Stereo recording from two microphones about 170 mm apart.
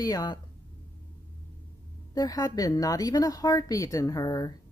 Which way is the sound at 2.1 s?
20° left (ahead or behind).